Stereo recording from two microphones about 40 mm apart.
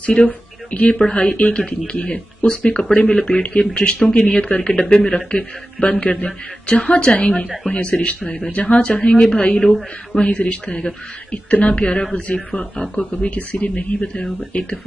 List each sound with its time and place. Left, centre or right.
0.1 s a man's voice: left
7.2 s a man's voice: left
8.4 s speech: left
8.8 s a man's voice: centre